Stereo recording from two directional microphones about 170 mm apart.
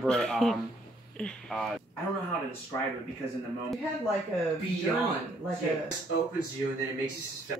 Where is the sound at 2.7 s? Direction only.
15° left (ahead or behind).